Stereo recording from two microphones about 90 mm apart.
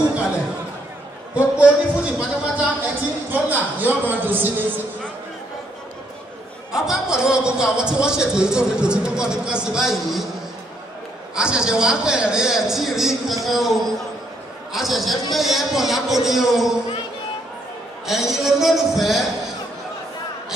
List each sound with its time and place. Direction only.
1.3 s a sound: 15° right (ahead or behind)
3.4 s a man's voice: 20° right (ahead or behind)
6.7 s a man's voice: 5° right (ahead or behind)
11.3 s a man's voice: 10° right (ahead or behind)
18.0 s a man's voice: 5° right (ahead or behind)